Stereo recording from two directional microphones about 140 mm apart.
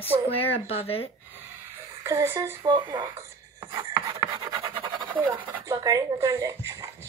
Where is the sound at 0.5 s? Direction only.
45° left (ahead or behind).